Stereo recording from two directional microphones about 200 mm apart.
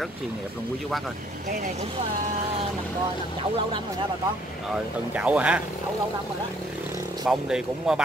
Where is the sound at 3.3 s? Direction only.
25° right (ahead or behind).